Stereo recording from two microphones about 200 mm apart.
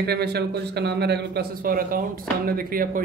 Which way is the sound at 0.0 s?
55° right (ahead or behind).